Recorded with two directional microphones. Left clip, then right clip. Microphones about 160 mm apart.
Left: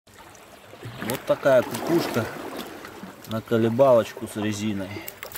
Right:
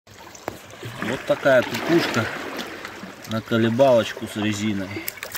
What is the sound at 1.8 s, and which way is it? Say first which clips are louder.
Speech: right 4 dB; 15° left (ahead or behind).